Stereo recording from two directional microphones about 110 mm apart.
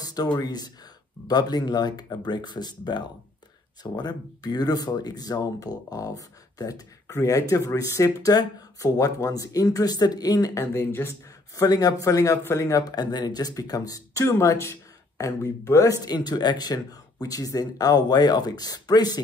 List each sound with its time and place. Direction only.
0.0 s a sound: 35° left (ahead or behind)
0.4 s a man's voice: 35° left (ahead or behind)
10.6 s speech: 25° left (ahead or behind)
11.6 s a man's voice: 35° left (ahead or behind)